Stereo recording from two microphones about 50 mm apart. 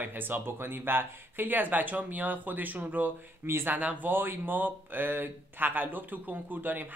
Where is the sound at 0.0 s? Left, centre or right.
Right.